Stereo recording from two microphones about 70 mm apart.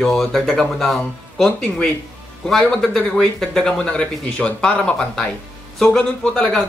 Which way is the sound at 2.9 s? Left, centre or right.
Centre.